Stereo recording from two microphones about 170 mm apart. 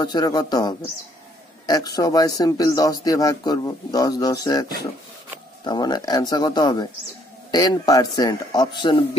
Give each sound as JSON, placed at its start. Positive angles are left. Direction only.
{"t": 0.0, "sound": "speech", "side_deg": 25}